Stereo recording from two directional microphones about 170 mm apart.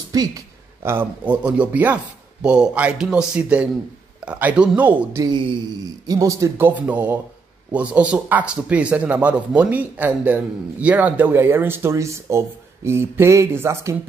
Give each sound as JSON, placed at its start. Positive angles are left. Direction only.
{"t": 0.1, "sound": "speech", "side_deg": -20}
{"t": 5.2, "sound": "a man's voice", "side_deg": -25}